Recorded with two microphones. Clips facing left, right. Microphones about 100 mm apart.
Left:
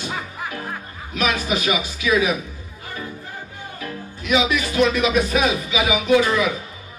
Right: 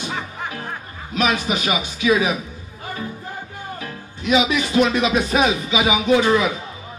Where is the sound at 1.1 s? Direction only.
25° right (ahead or behind).